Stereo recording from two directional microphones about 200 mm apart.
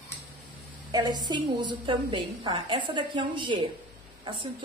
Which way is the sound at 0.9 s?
20° right (ahead or behind).